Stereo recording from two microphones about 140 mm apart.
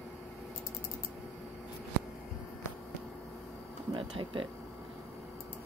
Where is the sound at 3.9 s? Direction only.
40° right (ahead or behind).